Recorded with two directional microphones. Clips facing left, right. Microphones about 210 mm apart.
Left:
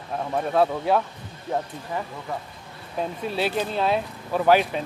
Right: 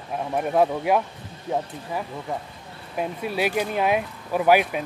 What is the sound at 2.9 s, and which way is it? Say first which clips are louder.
A man's voice: right 1 dB; 10° right (ahead or behind).